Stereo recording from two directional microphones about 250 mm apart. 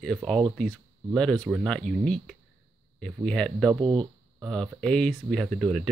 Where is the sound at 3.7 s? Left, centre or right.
Right.